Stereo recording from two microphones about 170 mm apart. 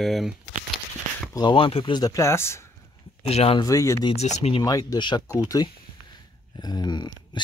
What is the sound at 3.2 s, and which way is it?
Speech, 35° left (ahead or behind).